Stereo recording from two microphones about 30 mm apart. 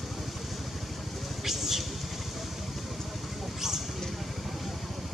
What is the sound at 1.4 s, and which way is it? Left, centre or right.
Vehicle, centre.